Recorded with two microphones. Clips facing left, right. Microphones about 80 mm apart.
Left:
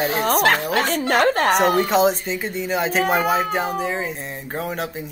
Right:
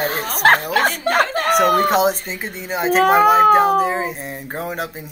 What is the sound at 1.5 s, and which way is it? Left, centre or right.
Speech, right.